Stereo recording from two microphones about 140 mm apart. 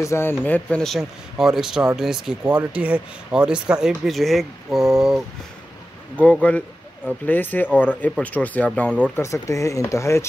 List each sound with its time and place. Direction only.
0.0 s speech: 20° left (ahead or behind); by 5.2 s centre (ahead or behind)
6.2 s speech: 10° left (ahead or behind)
9.2 s speech: 20° left (ahead or behind)